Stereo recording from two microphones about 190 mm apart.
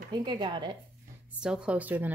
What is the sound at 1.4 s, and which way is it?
Speech, 5° right (ahead or behind).